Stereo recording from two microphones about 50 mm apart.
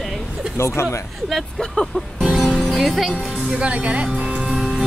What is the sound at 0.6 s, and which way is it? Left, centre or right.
Speech, left.